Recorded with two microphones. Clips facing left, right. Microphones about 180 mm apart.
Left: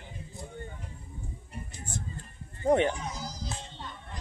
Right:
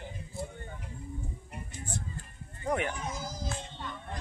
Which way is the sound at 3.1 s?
50° right (ahead or behind).